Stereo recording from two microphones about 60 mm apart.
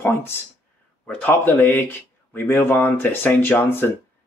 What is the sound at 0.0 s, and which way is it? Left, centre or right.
Speech, left.